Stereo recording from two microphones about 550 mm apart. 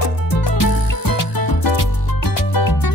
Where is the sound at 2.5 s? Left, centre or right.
Left.